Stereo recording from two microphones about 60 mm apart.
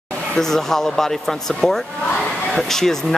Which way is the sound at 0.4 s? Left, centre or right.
Centre.